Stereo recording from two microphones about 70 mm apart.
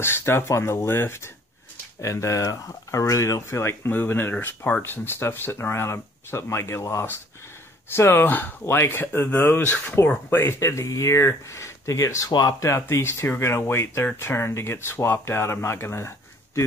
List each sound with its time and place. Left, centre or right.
0.0 s speech: left
3.9 s speech: left
7.9 s speech: left
10.3 s speech: left
12.8 s speech: left